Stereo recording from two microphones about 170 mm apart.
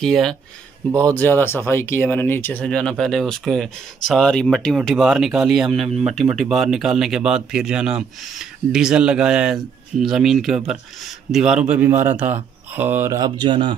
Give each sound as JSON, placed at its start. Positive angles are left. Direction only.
{"t": 0.0, "sound": "a man's voice", "side_deg": 0}